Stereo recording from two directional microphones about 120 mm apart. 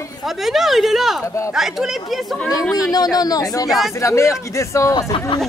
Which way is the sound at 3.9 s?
25° left (ahead or behind).